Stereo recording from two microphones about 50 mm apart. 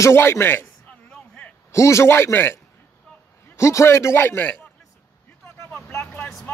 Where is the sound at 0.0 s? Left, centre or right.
Left.